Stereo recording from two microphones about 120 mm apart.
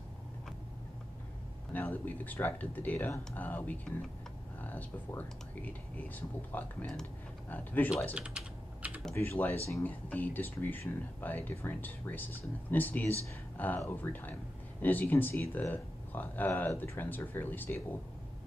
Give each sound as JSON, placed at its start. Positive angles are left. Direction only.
{"t": 1.7, "sound": "speech", "side_deg": 15}
{"t": 8.1, "sound": "typing", "side_deg": -10}
{"t": 9.1, "sound": "speech", "side_deg": 20}